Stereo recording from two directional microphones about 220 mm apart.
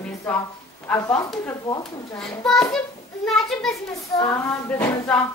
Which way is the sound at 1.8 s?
Centre (ahead or behind).